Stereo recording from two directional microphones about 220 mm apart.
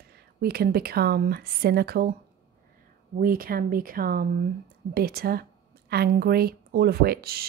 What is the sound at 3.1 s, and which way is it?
A woman's voice, 40° right (ahead or behind).